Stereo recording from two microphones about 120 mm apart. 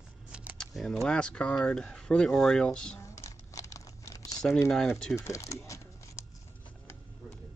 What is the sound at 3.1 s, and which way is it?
Crumpling, 25° left (ahead or behind).